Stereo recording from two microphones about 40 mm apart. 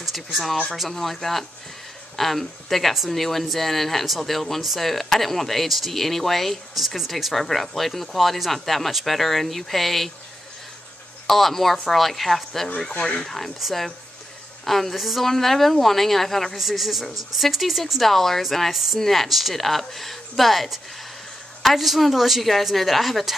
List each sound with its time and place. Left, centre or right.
0.0 s speech: centre
11.2 s speech: centre
12.6 s speech: centre